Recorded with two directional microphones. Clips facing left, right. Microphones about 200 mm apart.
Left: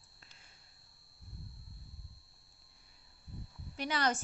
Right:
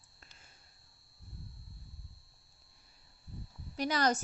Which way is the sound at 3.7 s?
40° right (ahead or behind).